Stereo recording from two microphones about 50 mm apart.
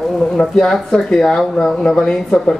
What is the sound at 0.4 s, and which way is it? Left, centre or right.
Speech, centre.